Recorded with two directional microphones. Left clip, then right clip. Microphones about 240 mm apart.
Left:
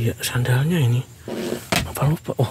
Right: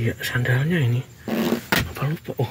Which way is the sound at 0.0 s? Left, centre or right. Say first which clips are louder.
Even; centre.